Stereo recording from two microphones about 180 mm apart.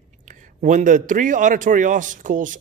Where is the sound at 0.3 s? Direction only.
45° right (ahead or behind).